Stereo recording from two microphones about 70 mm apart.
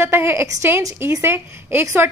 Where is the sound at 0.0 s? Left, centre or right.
Right.